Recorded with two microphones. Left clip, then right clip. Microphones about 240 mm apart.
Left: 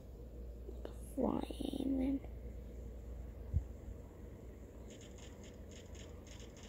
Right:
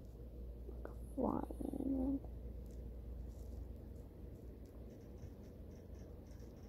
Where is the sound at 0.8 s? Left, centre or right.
Left.